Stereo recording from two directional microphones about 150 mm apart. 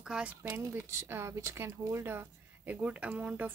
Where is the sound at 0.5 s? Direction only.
15° right (ahead or behind).